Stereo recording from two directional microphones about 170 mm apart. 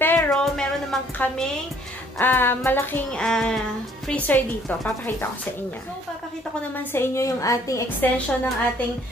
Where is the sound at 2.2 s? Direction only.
10° left (ahead or behind).